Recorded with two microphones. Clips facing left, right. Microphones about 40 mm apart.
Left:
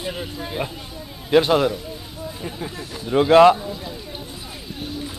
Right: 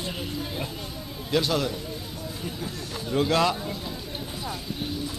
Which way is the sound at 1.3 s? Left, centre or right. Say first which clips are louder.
Left 9 dB; left.